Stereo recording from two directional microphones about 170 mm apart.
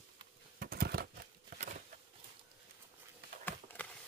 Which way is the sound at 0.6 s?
65° right (ahead or behind).